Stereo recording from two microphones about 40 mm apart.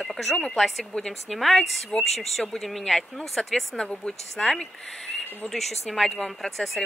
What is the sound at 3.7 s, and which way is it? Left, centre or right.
Speech, left.